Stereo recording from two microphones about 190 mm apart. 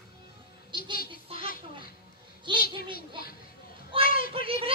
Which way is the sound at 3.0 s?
50° left (ahead or behind).